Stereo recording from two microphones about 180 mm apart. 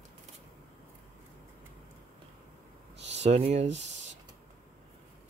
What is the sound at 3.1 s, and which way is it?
Speech, 35° right (ahead or behind).